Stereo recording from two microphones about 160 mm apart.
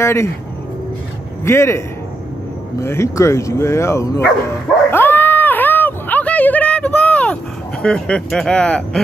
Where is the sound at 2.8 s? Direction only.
15° left (ahead or behind).